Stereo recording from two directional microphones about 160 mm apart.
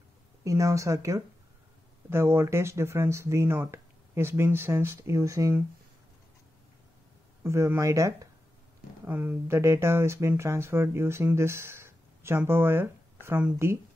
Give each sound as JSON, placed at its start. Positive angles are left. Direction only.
{"t": 0.4, "sound": "speech", "side_deg": -20}
{"t": 7.4, "sound": "speech", "side_deg": -15}